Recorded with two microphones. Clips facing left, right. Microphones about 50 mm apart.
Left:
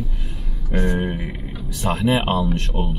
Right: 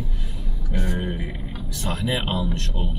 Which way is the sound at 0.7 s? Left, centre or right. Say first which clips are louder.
Left 6 dB; left.